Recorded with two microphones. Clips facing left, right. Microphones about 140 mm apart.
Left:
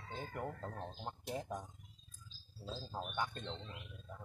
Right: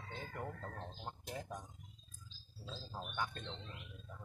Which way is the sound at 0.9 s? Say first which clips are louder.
Left 3 dB; 5° left (ahead or behind).